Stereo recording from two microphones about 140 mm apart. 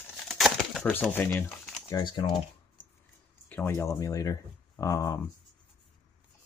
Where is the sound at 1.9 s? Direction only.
30° left (ahead or behind).